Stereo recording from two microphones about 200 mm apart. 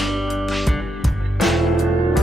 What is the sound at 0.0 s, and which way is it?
Music, centre (ahead or behind).